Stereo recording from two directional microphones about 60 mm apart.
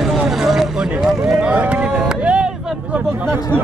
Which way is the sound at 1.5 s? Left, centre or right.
Right.